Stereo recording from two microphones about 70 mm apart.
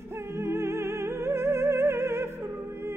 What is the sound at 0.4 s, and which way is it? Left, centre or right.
Music, right.